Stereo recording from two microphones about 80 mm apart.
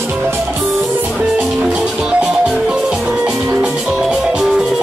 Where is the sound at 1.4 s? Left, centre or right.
Centre.